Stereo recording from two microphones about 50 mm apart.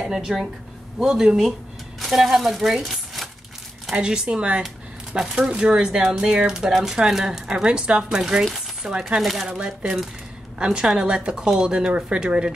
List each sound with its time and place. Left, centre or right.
0.1 s speech: centre
3.9 s speech: centre
8.5 s a sound: centre
9.2 s speech: centre
9.5 s speech: centre